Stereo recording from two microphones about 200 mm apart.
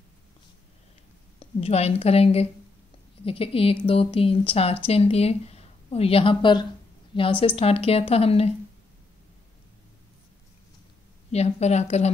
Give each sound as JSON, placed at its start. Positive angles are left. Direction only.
{"t": 1.4, "sound": "a woman's voice", "side_deg": 30}
{"t": 11.3, "sound": "a woman's voice", "side_deg": 35}